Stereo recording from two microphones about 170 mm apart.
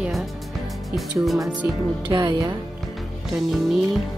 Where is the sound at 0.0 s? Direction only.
Centre (ahead or behind).